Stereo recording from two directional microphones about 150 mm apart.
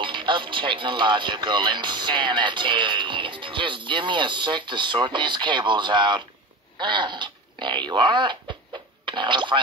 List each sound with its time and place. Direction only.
0.0 s speech: 35° right (ahead or behind)